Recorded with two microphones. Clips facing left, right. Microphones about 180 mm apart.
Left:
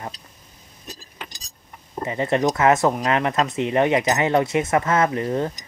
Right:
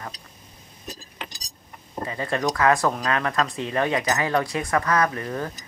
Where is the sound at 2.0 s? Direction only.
20° left (ahead or behind).